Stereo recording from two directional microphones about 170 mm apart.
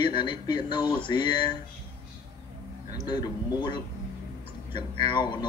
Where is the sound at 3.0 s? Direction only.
25° left (ahead or behind).